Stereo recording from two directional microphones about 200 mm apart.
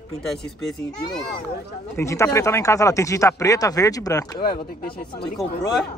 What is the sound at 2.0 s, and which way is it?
Speech, 15° left (ahead or behind).